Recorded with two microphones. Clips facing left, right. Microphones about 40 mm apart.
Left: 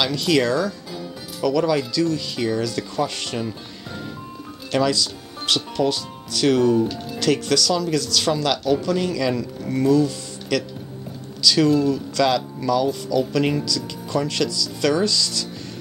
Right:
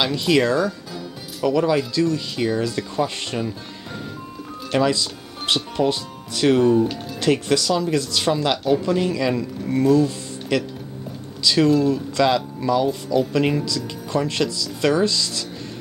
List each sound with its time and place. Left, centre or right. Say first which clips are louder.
0.0 s speech: right 1 dB; centre
4.6 s speech: right 1 dB; centre
11.4 s speech: even; centre